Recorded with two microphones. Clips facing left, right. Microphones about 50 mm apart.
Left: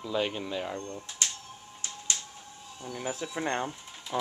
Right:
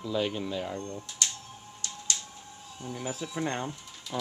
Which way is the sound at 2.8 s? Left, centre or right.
Centre.